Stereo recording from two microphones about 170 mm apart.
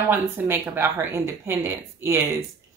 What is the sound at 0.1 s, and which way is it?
A woman's voice, 15° right (ahead or behind).